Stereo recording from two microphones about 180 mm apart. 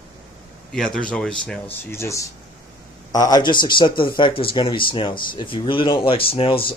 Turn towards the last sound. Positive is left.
turn(degrees=30)  # may be behind; listen again after turning